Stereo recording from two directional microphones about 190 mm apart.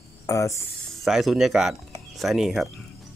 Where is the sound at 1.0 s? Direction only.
Centre (ahead or behind).